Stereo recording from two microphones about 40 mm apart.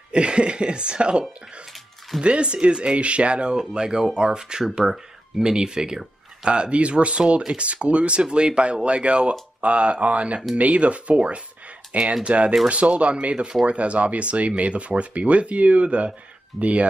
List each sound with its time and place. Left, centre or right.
0.1 s speech: right
1.7 s dog: centre
2.2 s speech: right